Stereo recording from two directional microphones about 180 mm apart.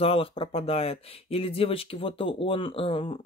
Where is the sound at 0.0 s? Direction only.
30° left (ahead or behind).